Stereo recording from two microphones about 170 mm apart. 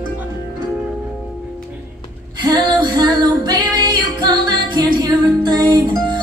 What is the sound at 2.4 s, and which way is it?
Music, 25° right (ahead or behind).